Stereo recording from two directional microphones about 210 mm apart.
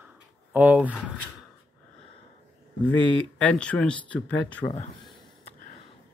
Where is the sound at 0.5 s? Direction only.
10° right (ahead or behind).